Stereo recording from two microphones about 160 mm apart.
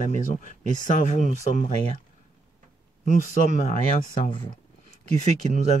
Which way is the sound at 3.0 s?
50° left (ahead or behind).